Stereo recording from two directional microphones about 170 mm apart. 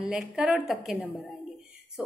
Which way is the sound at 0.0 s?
5° right (ahead or behind).